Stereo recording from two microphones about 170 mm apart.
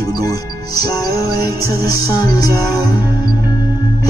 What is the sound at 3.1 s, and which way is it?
Music, 20° left (ahead or behind).